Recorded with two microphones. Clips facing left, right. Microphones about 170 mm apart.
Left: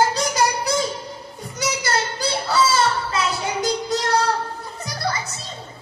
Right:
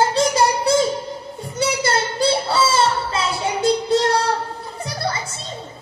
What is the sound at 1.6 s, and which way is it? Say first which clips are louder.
Children playing: right 3 dB; 30° right (ahead or behind).